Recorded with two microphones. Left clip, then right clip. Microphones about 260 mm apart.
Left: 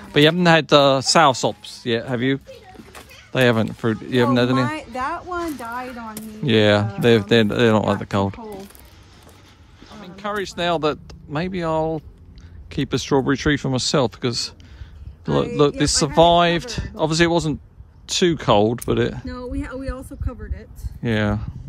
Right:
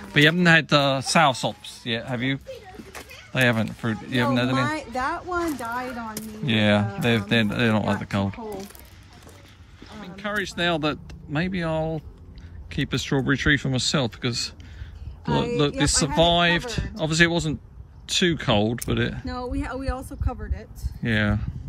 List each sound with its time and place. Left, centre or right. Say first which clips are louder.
0.1 s speech: left 3 dB; centre
9.8 s speech: left 3 dB; left
15.6 s speech: left 5 dB; centre
19.2 s speech: even; centre
21.0 s speech: left 2 dB; left